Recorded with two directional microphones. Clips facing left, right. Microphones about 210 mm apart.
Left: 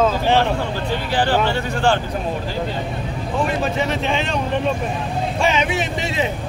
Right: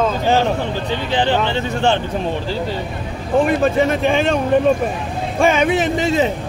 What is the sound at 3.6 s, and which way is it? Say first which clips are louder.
A man's voice: right 6 dB; 50° right (ahead or behind).